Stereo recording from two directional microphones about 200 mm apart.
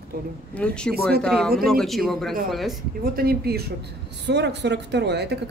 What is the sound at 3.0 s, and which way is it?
Speech, 50° right (ahead or behind).